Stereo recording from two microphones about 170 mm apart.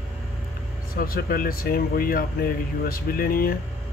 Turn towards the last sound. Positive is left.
turn(degrees=60)  # may be behind; listen again after turning